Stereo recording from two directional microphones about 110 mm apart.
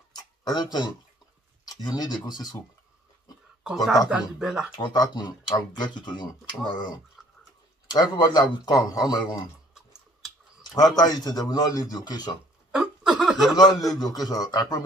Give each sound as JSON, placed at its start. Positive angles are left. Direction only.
{"t": 0.1, "sound": "tick-tock", "side_deg": 40}
{"t": 1.7, "sound": "speech", "side_deg": 35}
{"t": 3.6, "sound": "speech", "side_deg": 0}
{"t": 4.7, "sound": "speech", "side_deg": 45}
{"t": 7.2, "sound": "a sound", "side_deg": 0}
{"t": 7.9, "sound": "speech", "side_deg": 40}
{"t": 10.7, "sound": "speech", "side_deg": 35}
{"t": 12.7, "sound": "snicker", "side_deg": -5}
{"t": 13.8, "sound": "speech", "side_deg": 35}